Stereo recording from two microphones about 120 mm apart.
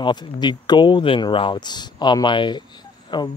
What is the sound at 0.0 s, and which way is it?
Speech, 40° left (ahead or behind).